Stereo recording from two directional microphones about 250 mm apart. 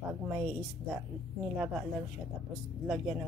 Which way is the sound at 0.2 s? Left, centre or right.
Centre.